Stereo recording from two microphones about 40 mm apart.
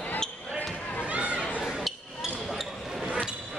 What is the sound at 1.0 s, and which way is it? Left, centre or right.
Chatter, right.